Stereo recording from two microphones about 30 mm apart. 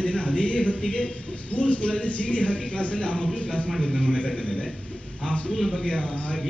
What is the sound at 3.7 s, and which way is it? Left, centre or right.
Speech, centre.